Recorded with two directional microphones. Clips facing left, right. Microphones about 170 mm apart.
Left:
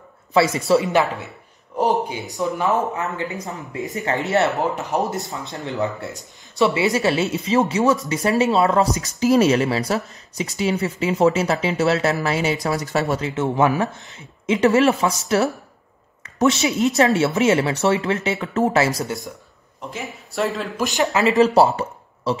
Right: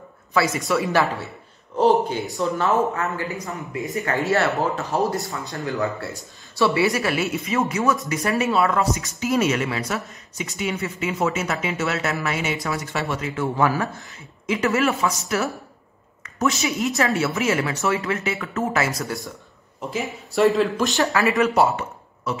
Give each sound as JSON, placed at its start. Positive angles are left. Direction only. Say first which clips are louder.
{"t": 0.3, "sound": "speech", "louder": "left 5 dB", "side_deg": 25}
{"t": 13.3, "sound": "speech", "louder": "left 1 dB", "side_deg": 25}
{"t": 19.9, "sound": "speech", "louder": "right 5 dB", "side_deg": 0}
{"t": 20.9, "sound": "speech", "louder": "left 2 dB", "side_deg": 20}